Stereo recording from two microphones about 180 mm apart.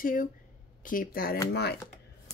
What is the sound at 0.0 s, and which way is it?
A woman's voice, 50° left (ahead or behind).